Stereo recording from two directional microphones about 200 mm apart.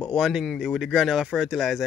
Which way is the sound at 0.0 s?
Centre (ahead or behind).